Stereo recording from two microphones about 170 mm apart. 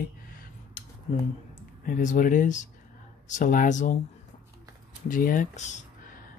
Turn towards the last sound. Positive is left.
turn(degrees=45)  # may be behind; listen again after turning